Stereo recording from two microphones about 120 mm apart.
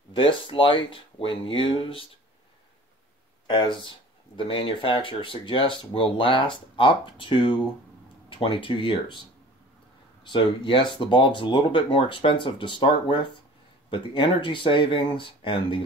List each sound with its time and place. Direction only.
0.1 s speech: 45° left (ahead or behind)
3.4 s speech: 40° left (ahead or behind)
10.2 s speech: 45° left (ahead or behind)